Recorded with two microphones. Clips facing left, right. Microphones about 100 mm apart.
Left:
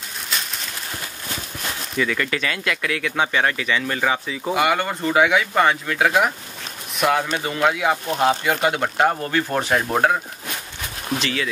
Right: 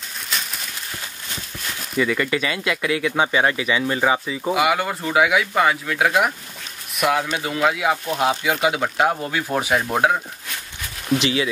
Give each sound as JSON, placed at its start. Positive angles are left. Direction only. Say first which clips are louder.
{"t": 0.3, "sound": "a sound", "louder": "even", "side_deg": 0}
{"t": 2.0, "sound": "speech", "louder": "right 3 dB", "side_deg": -5}
{"t": 11.1, "sound": "speech", "louder": "right 4 dB", "side_deg": -15}